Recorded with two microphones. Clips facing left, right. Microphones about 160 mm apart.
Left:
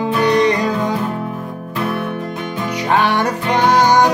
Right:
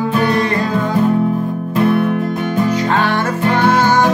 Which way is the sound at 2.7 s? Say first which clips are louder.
Left 4 dB; 15° left (ahead or behind).